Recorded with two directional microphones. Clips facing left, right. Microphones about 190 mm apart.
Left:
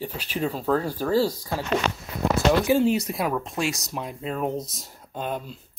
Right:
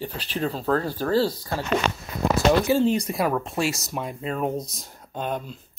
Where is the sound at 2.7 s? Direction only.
10° left (ahead or behind).